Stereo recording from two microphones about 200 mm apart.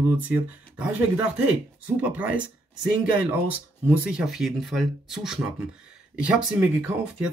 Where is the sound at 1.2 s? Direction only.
5° right (ahead or behind).